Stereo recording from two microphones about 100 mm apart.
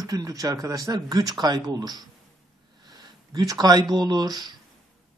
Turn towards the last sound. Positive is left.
turn(degrees=-40)  # may be behind; listen again after turning